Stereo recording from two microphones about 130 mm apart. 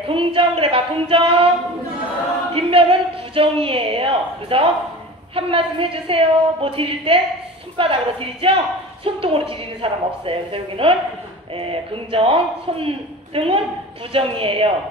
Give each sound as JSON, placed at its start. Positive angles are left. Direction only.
{"t": 0.1, "sound": "speech", "side_deg": -45}
{"t": 2.5, "sound": "speech", "side_deg": -45}